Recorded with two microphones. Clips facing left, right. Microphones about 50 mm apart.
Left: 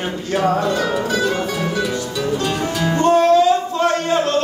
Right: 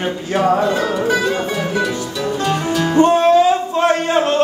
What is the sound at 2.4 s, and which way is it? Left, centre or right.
Music, centre.